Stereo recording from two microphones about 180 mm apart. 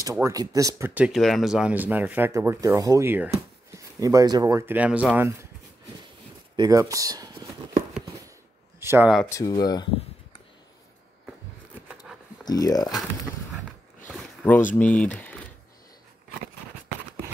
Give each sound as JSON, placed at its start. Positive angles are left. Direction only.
{"t": 0.0, "sound": "speech", "side_deg": -20}
{"t": 6.5, "sound": "speech", "side_deg": -20}
{"t": 8.7, "sound": "a sound", "side_deg": -15}
{"t": 9.5, "sound": "speech", "side_deg": 20}
{"t": 12.4, "sound": "speech", "side_deg": 20}
{"t": 14.1, "sound": "a sound", "side_deg": 10}
{"t": 14.8, "sound": "speech", "side_deg": 10}